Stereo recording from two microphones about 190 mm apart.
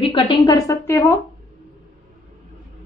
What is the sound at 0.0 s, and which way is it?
A woman's voice, 20° left (ahead or behind).